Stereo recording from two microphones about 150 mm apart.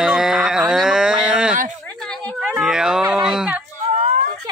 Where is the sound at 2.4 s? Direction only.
5° right (ahead or behind).